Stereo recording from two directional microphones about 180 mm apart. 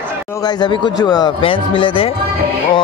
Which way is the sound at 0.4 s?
25° left (ahead or behind).